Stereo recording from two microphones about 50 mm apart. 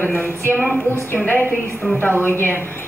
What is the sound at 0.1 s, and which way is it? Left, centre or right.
Speech, left.